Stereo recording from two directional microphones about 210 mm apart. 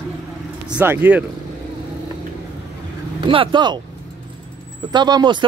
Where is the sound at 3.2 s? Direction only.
25° right (ahead or behind).